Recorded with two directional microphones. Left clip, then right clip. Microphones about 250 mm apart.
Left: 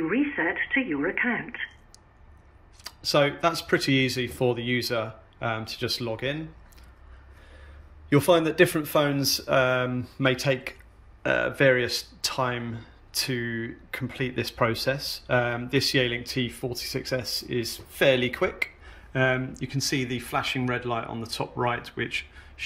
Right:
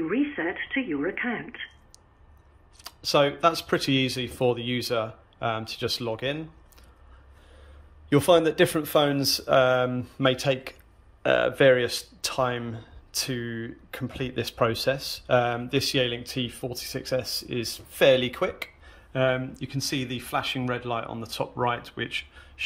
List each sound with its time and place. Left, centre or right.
0.0 s speech: centre
2.8 s speech: centre
8.1 s speech: centre